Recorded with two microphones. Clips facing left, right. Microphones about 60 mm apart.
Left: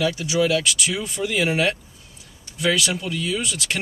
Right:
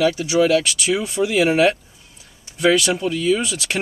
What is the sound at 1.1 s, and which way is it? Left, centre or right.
Speech, centre.